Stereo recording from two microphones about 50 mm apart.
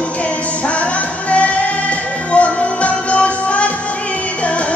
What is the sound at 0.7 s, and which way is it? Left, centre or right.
Music, left.